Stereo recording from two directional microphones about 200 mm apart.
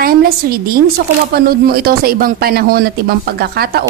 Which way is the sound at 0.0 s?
50° right (ahead or behind).